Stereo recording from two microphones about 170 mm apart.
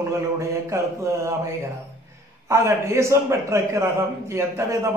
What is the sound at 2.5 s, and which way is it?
A man's voice, 15° right (ahead or behind).